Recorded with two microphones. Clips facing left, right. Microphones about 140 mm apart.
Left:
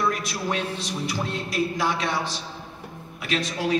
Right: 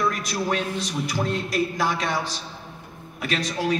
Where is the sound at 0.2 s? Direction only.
40° right (ahead or behind).